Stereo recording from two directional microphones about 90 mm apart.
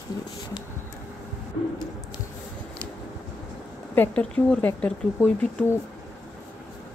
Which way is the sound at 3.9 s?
25° left (ahead or behind).